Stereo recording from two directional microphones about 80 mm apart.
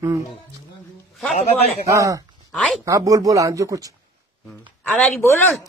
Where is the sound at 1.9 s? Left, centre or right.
Right.